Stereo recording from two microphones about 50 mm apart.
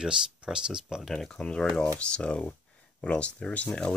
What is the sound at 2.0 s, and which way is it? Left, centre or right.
Speech, centre.